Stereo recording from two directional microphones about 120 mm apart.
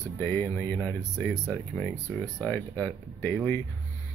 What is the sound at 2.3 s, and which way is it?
Speech, 15° left (ahead or behind).